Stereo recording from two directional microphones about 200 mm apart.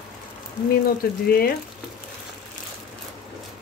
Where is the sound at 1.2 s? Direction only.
50° left (ahead or behind).